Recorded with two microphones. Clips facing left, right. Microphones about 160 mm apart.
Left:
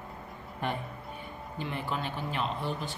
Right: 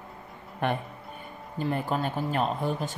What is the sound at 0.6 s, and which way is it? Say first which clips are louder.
Speech: right 5 dB; 60° right (ahead or behind).